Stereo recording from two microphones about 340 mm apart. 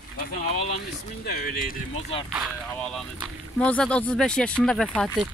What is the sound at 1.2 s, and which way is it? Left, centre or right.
Speech, left.